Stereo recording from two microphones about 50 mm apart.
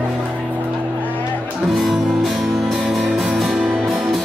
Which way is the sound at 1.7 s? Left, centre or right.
Centre.